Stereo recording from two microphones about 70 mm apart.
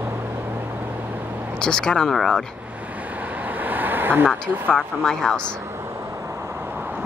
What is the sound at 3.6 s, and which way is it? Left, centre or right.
Vehicle, right.